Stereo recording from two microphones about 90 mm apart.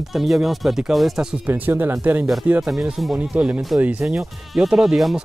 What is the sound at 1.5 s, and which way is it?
Speech, 25° right (ahead or behind).